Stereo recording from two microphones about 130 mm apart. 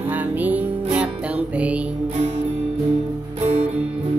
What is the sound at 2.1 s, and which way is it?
Music, 55° right (ahead or behind).